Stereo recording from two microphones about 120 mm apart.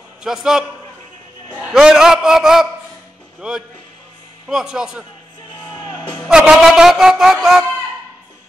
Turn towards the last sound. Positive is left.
turn(degrees=-5)  # may be behind; listen again after turning